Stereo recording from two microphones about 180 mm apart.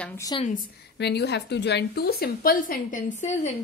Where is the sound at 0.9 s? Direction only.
70° left (ahead or behind); by 3.0 s 55° left (ahead or behind).